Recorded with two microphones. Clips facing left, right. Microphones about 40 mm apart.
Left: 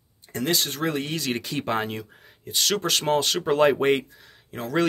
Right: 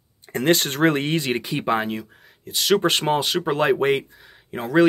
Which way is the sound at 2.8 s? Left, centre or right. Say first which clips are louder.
Right 4 dB; right.